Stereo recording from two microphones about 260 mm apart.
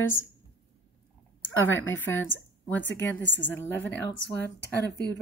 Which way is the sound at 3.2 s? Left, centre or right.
Left.